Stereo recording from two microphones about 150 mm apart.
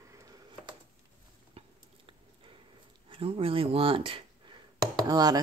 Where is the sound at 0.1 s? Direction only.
20° right (ahead or behind).